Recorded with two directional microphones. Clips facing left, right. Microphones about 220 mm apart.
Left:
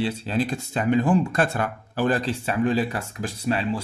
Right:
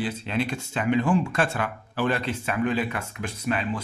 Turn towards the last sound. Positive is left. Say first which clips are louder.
# left 3 dB
turn(degrees=30)  # may be behind; listen again after turning